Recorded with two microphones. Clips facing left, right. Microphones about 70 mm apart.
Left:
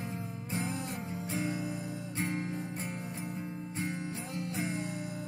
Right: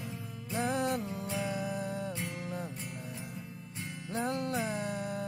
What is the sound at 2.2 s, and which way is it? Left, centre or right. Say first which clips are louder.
Music: left 3 dB; left.